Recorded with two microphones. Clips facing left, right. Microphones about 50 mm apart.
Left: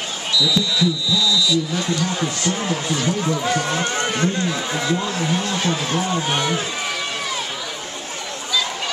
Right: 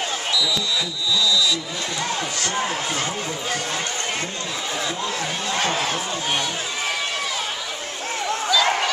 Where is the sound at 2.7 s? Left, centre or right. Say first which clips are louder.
Left 3 dB; right.